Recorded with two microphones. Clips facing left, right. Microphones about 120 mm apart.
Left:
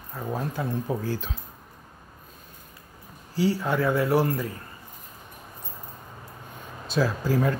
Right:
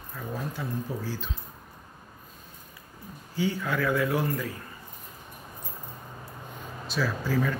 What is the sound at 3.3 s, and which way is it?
Speech, 35° left (ahead or behind).